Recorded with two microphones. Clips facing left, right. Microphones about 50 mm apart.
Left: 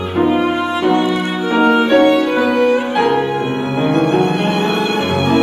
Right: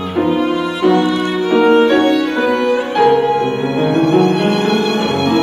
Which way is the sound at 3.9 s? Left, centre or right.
Left.